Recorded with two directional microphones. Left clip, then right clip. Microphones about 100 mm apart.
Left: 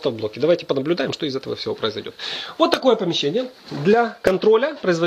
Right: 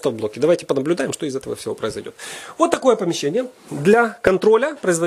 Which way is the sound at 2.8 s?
60° right (ahead or behind).